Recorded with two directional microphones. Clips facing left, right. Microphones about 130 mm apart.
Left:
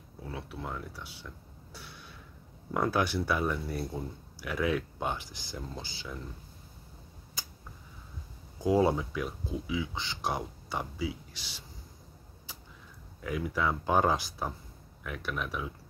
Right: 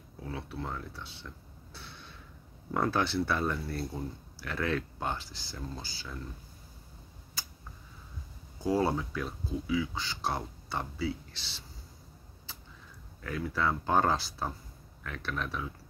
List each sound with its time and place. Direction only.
0.3 s speech: 10° left (ahead or behind)
1.7 s a sound: 10° left (ahead or behind)
2.7 s speech: 10° left (ahead or behind)
8.5 s speech: 15° left (ahead or behind)
12.5 s a sound: 10° left (ahead or behind)
13.2 s speech: 15° left (ahead or behind)